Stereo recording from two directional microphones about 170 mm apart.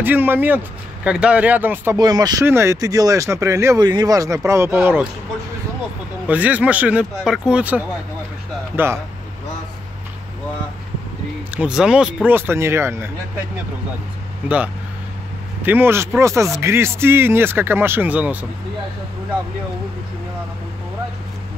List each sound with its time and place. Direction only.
0.0 s speech: 10° right (ahead or behind)
2.0 s speech: 25° right (ahead or behind)
6.2 s speech: 10° right (ahead or behind)
11.5 s speech: 5° right (ahead or behind)
15.6 s speech: 10° right (ahead or behind)